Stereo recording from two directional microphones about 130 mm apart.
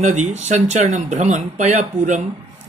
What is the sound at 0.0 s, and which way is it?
A woman's voice, 65° right (ahead or behind).